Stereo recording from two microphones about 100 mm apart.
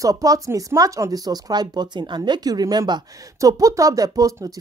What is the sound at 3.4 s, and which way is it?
Speech, 35° right (ahead or behind).